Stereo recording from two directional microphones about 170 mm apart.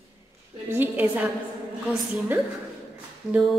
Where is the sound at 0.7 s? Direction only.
10° right (ahead or behind).